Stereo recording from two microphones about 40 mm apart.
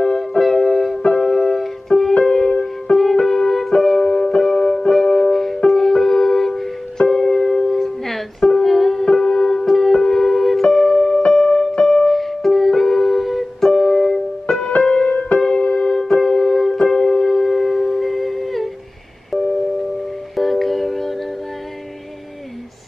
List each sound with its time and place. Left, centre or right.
0.4 s music: centre
13.7 s keyboard: centre
14.8 s music: centre